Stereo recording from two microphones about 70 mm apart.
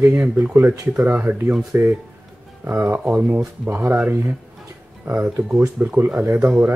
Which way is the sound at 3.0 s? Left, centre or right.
Centre.